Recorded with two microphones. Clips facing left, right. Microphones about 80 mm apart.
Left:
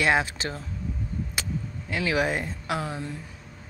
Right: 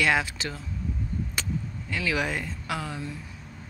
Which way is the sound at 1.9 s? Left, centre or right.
Left.